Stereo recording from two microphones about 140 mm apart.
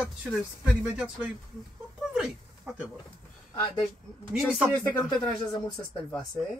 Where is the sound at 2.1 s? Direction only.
5° right (ahead or behind).